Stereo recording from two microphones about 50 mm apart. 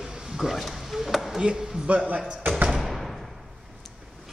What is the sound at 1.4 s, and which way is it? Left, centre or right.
Speech, centre.